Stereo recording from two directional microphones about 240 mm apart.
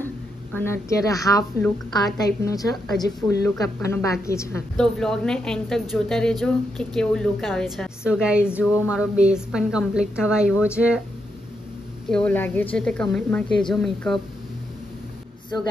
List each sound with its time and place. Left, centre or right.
0.0 s a woman's voice: centre
12.1 s a woman's voice: centre